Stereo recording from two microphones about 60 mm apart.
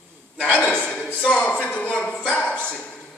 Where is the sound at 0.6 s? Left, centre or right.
Left.